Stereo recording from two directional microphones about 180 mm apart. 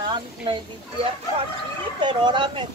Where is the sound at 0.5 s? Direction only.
30° right (ahead or behind).